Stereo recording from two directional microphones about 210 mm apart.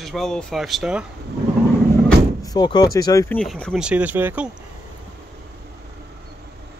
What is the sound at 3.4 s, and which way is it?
Speech, centre (ahead or behind).